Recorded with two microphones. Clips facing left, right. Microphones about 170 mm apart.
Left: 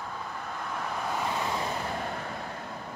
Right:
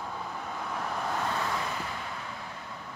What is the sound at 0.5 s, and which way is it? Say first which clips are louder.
Vehicle: even; centre (ahead or behind).